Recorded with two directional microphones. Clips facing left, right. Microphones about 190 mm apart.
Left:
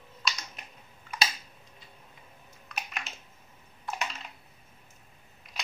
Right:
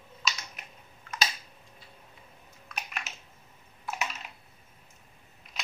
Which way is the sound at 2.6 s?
Centre (ahead or behind).